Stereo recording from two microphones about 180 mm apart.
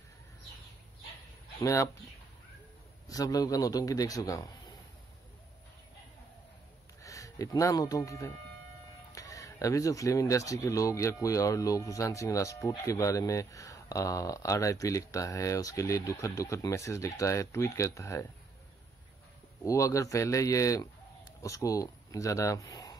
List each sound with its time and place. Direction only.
1.6 s speech: 15° left (ahead or behind)
3.1 s a man's voice: 20° left (ahead or behind)
7.0 s speech: 20° left (ahead or behind)
19.6 s speech: 15° left (ahead or behind)